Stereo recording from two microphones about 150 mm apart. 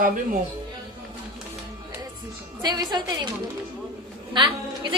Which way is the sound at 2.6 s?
25° right (ahead or behind).